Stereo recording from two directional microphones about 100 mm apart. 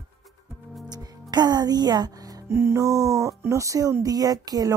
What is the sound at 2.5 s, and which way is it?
Speech, 25° right (ahead or behind).